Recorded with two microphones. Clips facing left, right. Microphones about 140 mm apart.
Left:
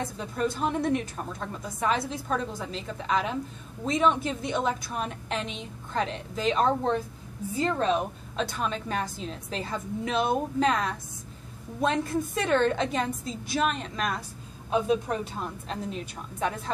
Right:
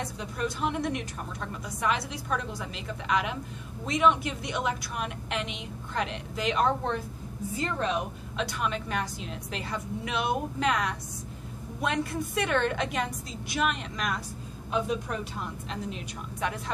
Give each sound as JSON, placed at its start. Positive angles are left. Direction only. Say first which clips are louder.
{"t": 0.4, "sound": "a woman's voice", "louder": "left 3 dB", "side_deg": 35}